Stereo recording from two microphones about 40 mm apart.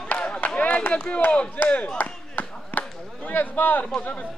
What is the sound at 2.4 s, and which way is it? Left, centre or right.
Basketball bounce, left.